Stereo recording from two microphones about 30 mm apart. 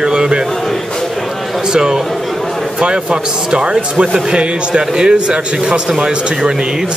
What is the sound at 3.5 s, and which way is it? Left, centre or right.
A man's voice, right.